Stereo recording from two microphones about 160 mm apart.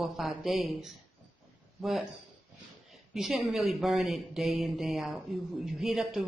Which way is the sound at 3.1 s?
Centre (ahead or behind).